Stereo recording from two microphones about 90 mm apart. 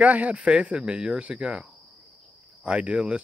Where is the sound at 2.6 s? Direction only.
15° right (ahead or behind).